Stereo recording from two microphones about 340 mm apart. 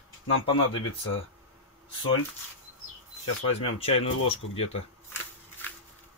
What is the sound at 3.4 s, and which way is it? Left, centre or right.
Speech, left.